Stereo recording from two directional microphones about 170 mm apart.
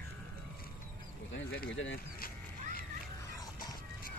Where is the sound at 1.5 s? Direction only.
90° left; by 2.9 s 60° left (ahead or behind).